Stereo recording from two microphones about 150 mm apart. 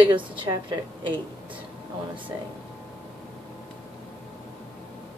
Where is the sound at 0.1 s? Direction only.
30° right (ahead or behind).